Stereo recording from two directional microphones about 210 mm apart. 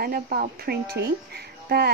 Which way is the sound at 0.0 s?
45° right (ahead or behind).